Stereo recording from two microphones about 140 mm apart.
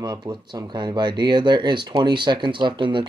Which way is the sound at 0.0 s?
30° right (ahead or behind).